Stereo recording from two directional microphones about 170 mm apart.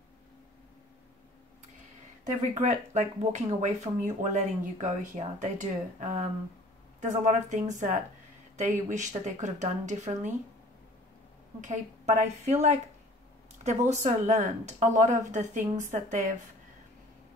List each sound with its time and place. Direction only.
2.2 s speech: 45° right (ahead or behind)
11.6 s speech: 45° right (ahead or behind)